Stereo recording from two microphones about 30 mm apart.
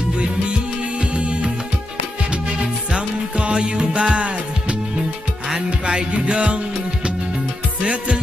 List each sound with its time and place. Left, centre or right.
0.2 s music: right
2.6 s music: right
3.9 s music: right